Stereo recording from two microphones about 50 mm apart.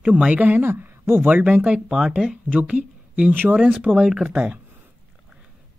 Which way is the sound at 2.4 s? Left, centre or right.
Right.